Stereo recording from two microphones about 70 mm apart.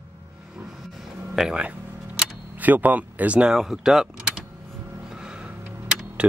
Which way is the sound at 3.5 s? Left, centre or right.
Centre.